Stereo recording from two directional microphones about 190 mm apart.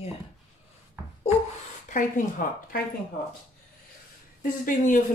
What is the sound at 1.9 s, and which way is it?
Speech, 45° left (ahead or behind).